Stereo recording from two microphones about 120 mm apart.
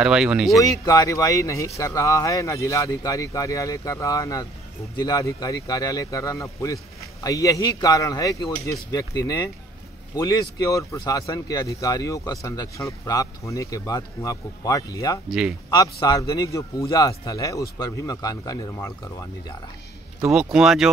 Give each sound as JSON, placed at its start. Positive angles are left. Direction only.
{"t": 0.0, "sound": "speech", "side_deg": -5}
{"t": 0.6, "sound": "a man's voice", "side_deg": 25}
{"t": 15.2, "sound": "speech", "side_deg": -5}
{"t": 15.7, "sound": "a man's voice", "side_deg": 35}
{"t": 20.5, "sound": "speech", "side_deg": -5}